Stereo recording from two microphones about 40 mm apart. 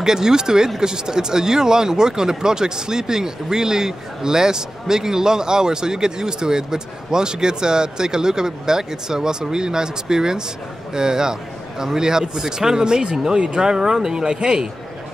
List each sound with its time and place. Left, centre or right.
0.0 s speech: centre